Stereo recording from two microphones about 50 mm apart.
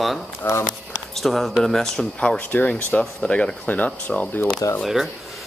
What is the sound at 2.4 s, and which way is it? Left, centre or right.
Speech, left.